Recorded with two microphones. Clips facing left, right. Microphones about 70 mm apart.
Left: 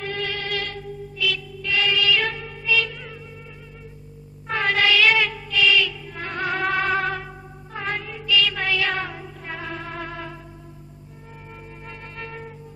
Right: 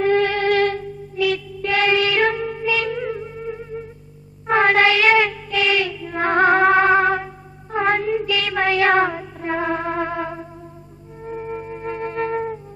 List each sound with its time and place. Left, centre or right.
0.0 s music: right